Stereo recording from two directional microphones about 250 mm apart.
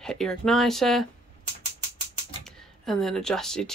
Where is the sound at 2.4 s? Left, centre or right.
Centre.